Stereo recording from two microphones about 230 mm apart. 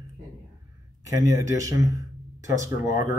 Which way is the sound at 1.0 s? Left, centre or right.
Centre.